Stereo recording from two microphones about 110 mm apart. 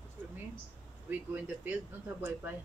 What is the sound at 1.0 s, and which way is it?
Speech, 15° right (ahead or behind).